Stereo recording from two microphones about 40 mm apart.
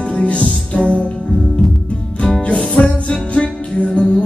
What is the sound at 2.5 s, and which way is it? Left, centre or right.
Music, left.